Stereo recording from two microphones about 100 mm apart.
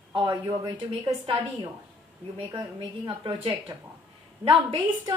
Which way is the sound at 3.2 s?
60° right (ahead or behind).